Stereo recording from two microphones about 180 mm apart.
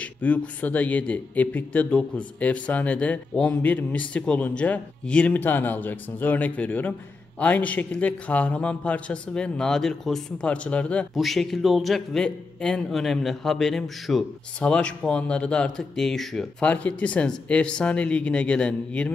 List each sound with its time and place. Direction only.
0.0 s speech: 10° left (ahead or behind)